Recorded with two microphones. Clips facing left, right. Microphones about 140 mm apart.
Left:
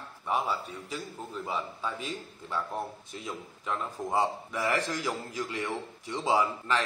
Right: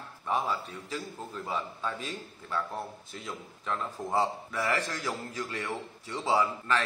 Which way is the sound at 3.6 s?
15° left (ahead or behind).